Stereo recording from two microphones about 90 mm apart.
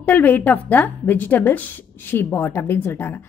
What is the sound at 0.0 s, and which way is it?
Speech, 20° left (ahead or behind).